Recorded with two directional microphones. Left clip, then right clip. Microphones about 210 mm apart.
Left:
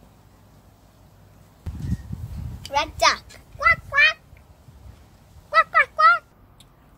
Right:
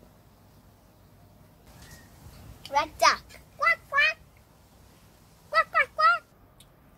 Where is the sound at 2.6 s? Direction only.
5° left (ahead or behind).